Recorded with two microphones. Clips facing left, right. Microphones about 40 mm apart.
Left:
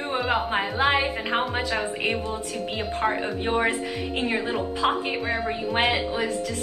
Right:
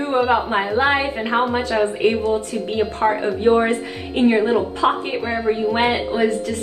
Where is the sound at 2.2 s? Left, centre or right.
Right.